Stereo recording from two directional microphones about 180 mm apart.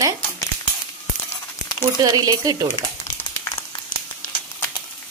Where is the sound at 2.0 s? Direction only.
20° right (ahead or behind).